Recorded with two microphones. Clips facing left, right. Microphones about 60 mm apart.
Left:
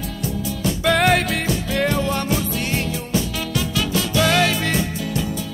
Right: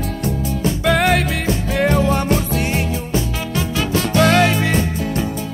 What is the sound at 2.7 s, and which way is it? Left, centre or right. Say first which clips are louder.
Music: right 2 dB; right.